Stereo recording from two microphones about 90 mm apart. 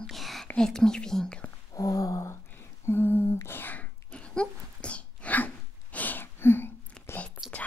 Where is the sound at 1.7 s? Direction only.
40° left (ahead or behind); by 6.7 s 25° left (ahead or behind).